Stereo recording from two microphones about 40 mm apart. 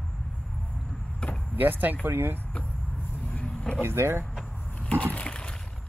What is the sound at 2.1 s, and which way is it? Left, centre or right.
Speech, right.